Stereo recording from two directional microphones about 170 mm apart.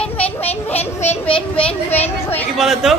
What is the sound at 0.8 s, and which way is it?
Speech, 40° left (ahead or behind).